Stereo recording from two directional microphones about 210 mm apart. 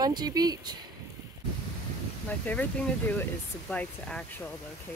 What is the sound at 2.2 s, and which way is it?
Speech, 5° left (ahead or behind).